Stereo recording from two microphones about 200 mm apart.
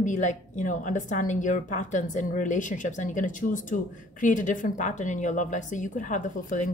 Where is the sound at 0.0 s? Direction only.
40° left (ahead or behind).